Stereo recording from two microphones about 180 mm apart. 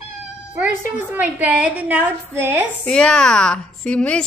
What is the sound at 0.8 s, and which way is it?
A woman's voice, 10° right (ahead or behind).